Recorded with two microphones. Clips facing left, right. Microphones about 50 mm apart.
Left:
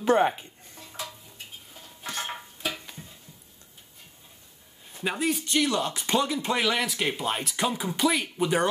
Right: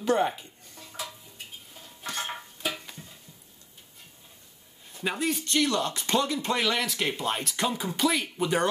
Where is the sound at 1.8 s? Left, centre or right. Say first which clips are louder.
Even; centre.